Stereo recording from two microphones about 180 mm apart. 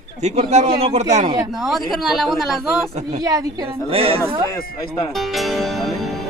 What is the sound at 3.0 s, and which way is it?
Speech, 20° right (ahead or behind).